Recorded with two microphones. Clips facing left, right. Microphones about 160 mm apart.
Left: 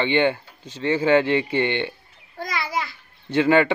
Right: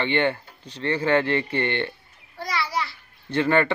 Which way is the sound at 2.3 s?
50° left (ahead or behind).